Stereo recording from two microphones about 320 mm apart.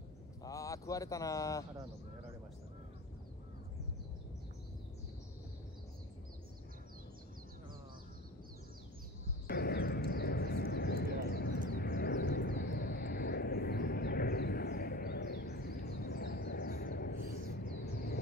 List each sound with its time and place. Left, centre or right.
0.4 s speech: centre
9.5 s a sound: left
11.7 s vehicle: left